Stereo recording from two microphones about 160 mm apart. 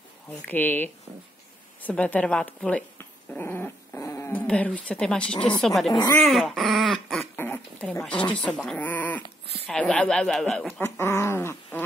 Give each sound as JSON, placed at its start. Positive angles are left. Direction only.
{"t": 0.3, "sound": "speech", "side_deg": 10}
{"t": 6.1, "sound": "dog", "side_deg": 0}
{"t": 7.3, "sound": "dog", "side_deg": 15}
{"t": 8.0, "sound": "speech", "side_deg": 5}
{"t": 10.8, "sound": "speech", "side_deg": 15}